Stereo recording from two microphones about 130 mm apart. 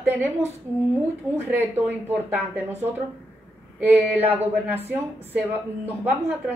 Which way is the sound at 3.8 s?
15° right (ahead or behind).